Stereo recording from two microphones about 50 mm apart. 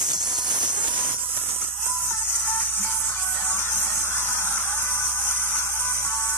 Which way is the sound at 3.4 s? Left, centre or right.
Left.